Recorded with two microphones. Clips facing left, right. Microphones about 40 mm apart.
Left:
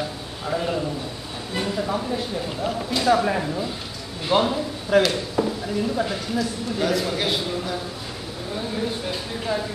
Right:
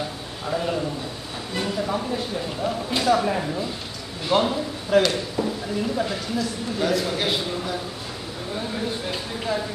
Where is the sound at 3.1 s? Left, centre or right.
Centre.